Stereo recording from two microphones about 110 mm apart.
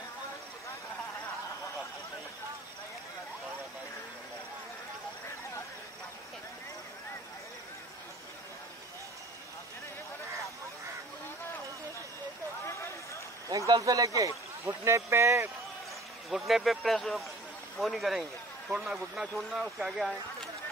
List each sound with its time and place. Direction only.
12.6 s a sound: 25° left (ahead or behind)
13.5 s speech: 30° right (ahead or behind)
16.3 s speech: centre (ahead or behind)